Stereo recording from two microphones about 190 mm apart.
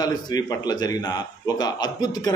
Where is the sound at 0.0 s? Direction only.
20° left (ahead or behind).